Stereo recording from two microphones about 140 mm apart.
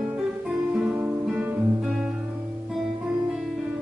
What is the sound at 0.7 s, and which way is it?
Guitar, 10° right (ahead or behind).